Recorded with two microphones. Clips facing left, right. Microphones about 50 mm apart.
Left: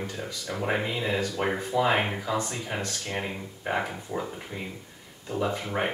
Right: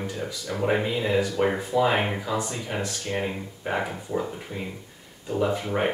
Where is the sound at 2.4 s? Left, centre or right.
Centre.